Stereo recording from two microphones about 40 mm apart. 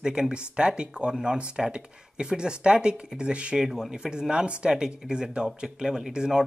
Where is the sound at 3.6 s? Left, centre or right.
Centre.